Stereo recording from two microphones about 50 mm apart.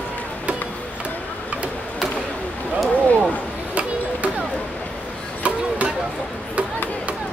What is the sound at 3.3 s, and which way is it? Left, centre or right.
Chop, right.